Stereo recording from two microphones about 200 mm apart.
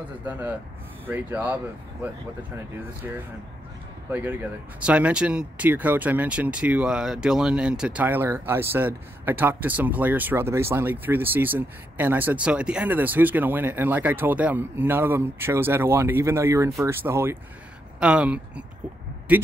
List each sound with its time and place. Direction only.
1.0 s speech: 10° right (ahead or behind)